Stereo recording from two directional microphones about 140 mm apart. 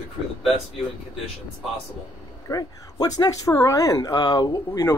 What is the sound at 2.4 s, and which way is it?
Speech, 25° left (ahead or behind).